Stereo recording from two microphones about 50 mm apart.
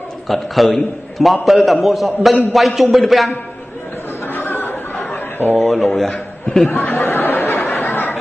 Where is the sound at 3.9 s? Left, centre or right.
Left.